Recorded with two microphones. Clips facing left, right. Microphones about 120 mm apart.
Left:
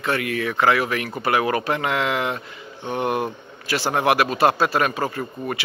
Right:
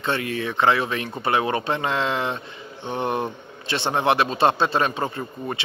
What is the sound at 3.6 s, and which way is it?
Speech, 25° right (ahead or behind).